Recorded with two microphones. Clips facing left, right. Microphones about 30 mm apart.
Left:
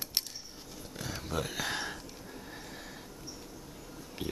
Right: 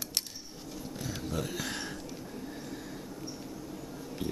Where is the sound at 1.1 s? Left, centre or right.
Centre.